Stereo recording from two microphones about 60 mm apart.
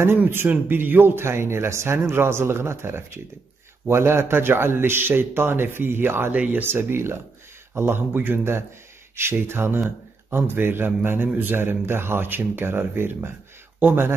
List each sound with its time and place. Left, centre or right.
0.2 s speech: right
6.3 s speech: right
6.7 s a man's voice: right